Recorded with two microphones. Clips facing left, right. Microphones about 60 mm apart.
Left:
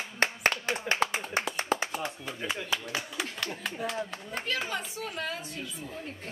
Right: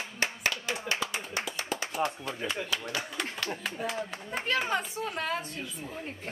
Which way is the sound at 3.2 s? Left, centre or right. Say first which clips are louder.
Right 1 dB; centre.